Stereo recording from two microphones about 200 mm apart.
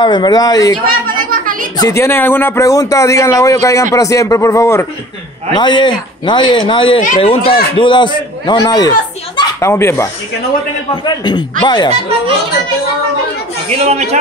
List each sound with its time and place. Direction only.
0.0 s speech: 20° left (ahead or behind)
0.8 s a sound: 45° right (ahead or behind)
1.8 s speech: 15° left (ahead or behind)
11.1 s speech: 20° left (ahead or behind)
13.7 s speech: 30° right (ahead or behind)